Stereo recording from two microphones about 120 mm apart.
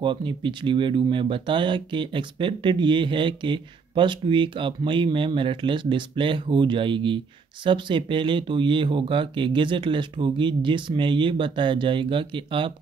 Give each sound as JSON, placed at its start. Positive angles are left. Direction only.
{"t": 0.0, "sound": "speech", "side_deg": -40}